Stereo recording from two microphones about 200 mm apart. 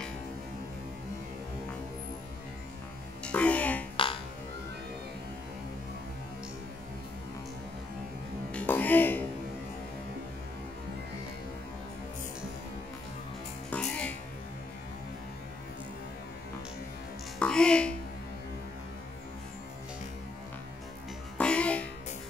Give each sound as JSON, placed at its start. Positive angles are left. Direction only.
{"t": 3.3, "sound": "music", "side_deg": 5}
{"t": 3.9, "sound": "burping", "side_deg": 25}
{"t": 8.5, "sound": "music", "side_deg": 5}
{"t": 13.7, "sound": "music", "side_deg": 5}
{"t": 17.4, "sound": "music", "side_deg": 5}
{"t": 21.4, "sound": "music", "side_deg": 5}